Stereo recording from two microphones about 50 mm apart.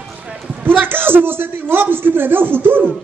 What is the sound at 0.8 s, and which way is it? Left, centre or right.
A man's voice, right.